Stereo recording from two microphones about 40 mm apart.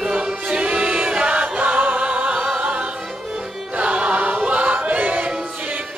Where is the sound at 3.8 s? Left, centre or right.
Right.